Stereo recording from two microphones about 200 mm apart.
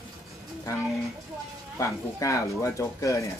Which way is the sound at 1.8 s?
15° left (ahead or behind).